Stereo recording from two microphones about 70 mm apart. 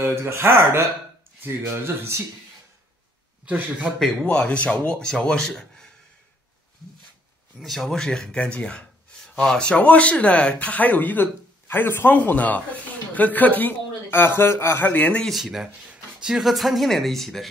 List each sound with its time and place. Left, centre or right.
0.0 s speech: right
3.4 s speech: right
4.3 s speech: centre
7.6 s speech: centre; by 15.2 s left
15.2 s speech: centre